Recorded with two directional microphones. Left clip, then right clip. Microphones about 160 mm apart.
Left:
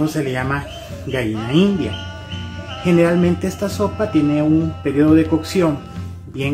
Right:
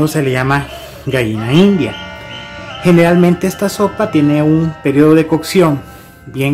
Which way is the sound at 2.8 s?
50° right (ahead or behind).